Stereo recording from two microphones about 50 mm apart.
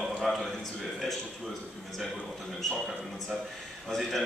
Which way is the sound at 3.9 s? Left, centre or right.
Centre.